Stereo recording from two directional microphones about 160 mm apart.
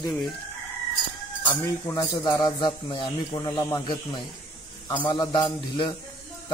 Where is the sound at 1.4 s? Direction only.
20° left (ahead or behind).